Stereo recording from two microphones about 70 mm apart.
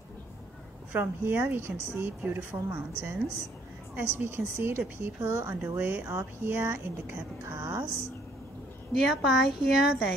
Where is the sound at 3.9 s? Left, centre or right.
Right.